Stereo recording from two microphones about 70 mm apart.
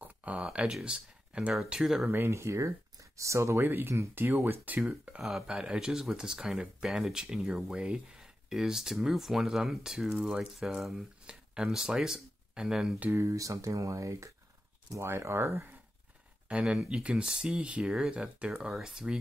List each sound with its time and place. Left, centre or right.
0.0 s speech: right
1.5 s speech: centre
2.0 s speech: right
5.5 s speech: centre
13.1 s speech: right
16.4 s speech: centre